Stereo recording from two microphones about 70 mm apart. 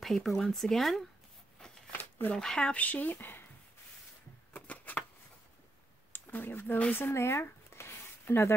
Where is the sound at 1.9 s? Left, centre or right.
Left.